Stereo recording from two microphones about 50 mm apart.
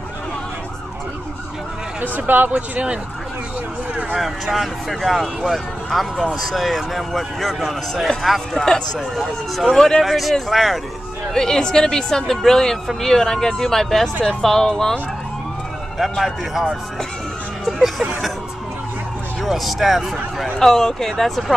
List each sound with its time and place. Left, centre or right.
2.0 s speech: right
2.5 s speech: right
4.1 s speech: centre
9.1 s speech: centre
9.7 s speech: centre
11.3 s speech: centre
16.0 s speech: centre
17.7 s speech: centre
19.4 s speech: centre
20.5 s speech: centre